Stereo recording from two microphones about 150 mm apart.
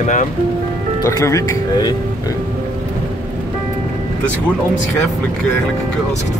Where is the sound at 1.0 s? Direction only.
20° left (ahead or behind).